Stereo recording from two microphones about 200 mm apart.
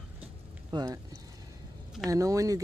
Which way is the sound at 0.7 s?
20° right (ahead or behind).